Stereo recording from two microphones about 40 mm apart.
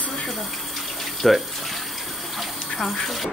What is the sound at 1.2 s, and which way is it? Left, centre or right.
Speech, centre.